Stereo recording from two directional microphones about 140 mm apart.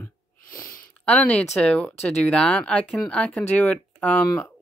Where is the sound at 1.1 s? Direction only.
10° left (ahead or behind).